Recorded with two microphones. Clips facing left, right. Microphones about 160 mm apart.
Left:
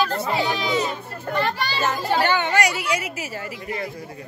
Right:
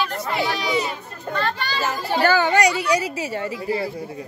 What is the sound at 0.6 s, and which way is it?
Speech, 10° right (ahead or behind).